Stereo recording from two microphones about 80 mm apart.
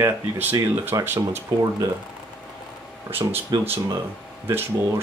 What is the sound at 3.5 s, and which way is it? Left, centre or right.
Speech, right.